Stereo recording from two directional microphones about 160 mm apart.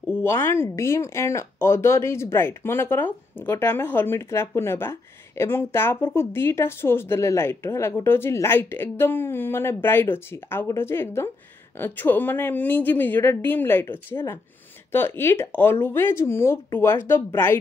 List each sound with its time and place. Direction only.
0.1 s speech: 15° left (ahead or behind)